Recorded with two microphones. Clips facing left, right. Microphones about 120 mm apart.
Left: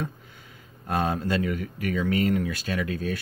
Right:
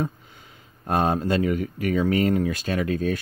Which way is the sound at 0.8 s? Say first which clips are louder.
Right 4 dB; 35° right (ahead or behind).